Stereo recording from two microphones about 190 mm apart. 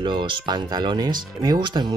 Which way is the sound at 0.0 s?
25° right (ahead or behind).